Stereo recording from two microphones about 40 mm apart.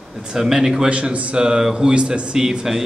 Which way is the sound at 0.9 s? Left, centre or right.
Right.